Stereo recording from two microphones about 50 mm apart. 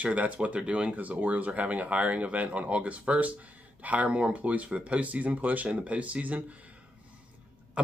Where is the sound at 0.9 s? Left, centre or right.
Right.